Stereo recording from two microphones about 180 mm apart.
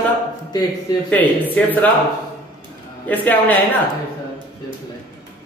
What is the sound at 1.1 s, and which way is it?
Speech, 10° left (ahead or behind).